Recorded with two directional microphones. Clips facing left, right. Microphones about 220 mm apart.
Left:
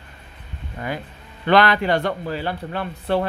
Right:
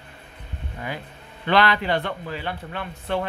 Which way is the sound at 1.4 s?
50° left (ahead or behind).